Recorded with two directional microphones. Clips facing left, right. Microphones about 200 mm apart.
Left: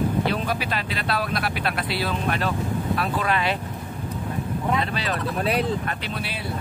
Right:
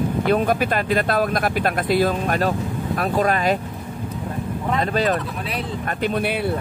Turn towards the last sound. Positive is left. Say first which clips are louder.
# right 8 dB
turn(degrees=-50)  # may be behind; listen again after turning